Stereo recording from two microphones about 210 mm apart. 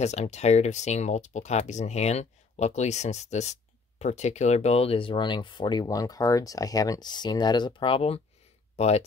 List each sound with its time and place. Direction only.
0.0 s speech: 30° left (ahead or behind)